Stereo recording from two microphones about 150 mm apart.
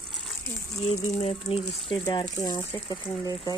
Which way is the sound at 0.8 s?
45° left (ahead or behind).